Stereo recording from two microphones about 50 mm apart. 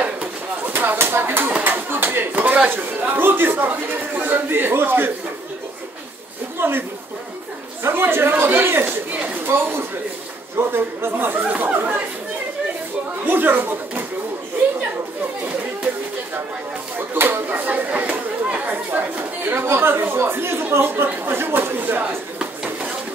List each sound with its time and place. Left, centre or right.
0.0 s a sound: right
0.7 s speech: right
1.6 s a sound: right
2.9 s a man's voice: right
6.6 s speech: right
7.8 s a man's voice: right
13.3 s speech: right
17.1 s a man's voice: right
17.5 s speech: right
18.9 s speech: right
19.5 s a man's voice: right